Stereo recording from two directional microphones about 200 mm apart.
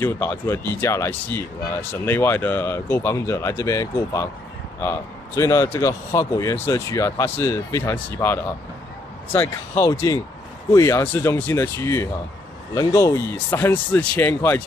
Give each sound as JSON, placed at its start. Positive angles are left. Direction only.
{"t": 0.0, "sound": "speech", "side_deg": 10}